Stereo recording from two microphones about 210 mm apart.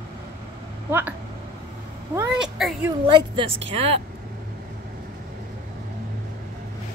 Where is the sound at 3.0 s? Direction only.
25° right (ahead or behind).